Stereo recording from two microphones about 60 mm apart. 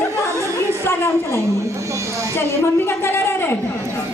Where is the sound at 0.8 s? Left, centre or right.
Left.